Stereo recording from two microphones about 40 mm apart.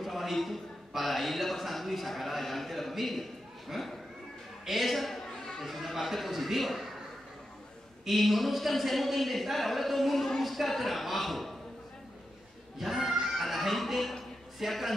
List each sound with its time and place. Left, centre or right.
0.0 s a man's voice: centre
5.3 s chatter: centre
5.6 s speech: centre
8.1 s speech: centre
12.7 s speech: centre
13.1 s music: centre
14.6 s speech: centre